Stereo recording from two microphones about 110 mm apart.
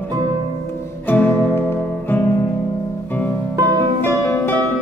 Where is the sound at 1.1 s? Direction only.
20° left (ahead or behind).